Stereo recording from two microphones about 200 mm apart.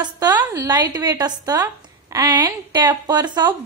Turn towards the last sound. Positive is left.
turn(degrees=-20)  # may be behind; listen again after turning